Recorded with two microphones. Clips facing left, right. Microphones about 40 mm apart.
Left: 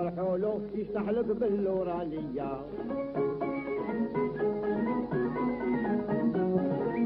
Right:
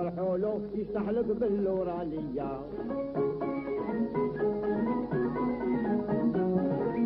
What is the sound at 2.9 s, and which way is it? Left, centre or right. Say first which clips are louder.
Music: even; centre.